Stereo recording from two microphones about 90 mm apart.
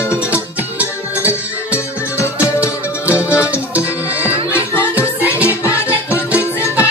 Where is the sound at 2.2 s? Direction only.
30° left (ahead or behind).